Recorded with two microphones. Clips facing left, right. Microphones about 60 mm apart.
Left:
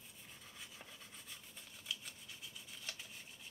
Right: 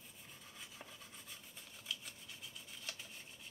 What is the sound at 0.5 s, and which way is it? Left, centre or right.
Rub, centre.